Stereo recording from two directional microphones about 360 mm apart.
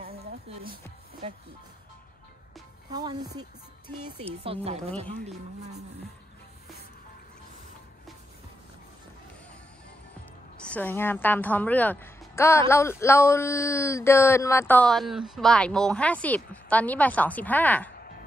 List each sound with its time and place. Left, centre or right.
0.0 s music: right
2.9 s speech: centre
4.6 s speech: centre
10.6 s a woman's voice: centre
17.9 s music: left